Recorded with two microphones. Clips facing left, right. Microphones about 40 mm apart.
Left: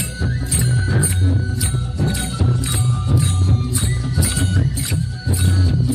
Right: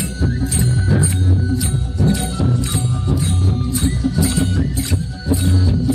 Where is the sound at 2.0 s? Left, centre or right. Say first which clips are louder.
Right 5 dB; centre.